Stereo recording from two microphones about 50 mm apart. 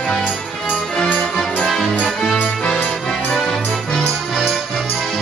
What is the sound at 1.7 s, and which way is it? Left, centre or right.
Music, centre.